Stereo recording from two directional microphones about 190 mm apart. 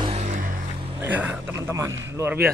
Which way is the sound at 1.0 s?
10° right (ahead or behind).